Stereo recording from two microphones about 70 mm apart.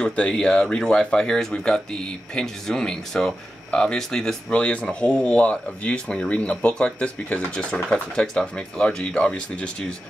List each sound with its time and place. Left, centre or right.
0.0 s speech: centre